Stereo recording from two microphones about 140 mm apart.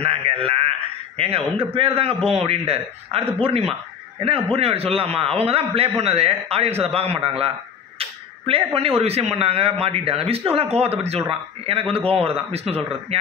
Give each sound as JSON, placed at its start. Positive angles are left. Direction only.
{"t": 0.0, "sound": "a man's voice", "side_deg": -45}